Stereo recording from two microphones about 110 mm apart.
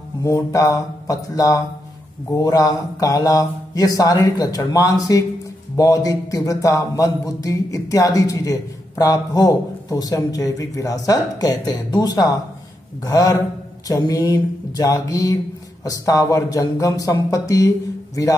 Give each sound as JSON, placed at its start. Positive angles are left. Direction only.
{"t": 0.2, "sound": "a man's voice", "side_deg": 30}